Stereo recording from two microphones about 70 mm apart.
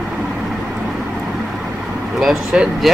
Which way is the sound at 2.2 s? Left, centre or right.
Centre.